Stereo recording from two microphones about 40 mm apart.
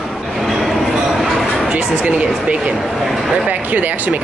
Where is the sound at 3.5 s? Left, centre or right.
Right.